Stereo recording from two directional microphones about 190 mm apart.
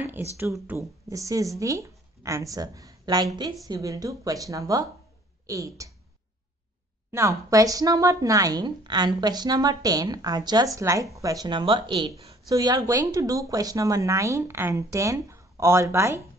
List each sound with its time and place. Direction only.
0.4 s speech: 15° right (ahead or behind)
7.1 s speech: 15° right (ahead or behind)